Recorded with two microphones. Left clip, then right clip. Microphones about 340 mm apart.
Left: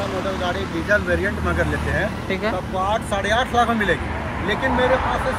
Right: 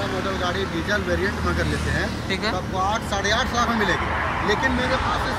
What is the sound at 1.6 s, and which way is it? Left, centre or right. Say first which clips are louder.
Speech: left 3 dB; centre.